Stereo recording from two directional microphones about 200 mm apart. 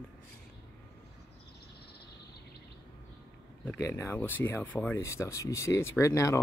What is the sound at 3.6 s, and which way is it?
Speech, 10° left (ahead or behind).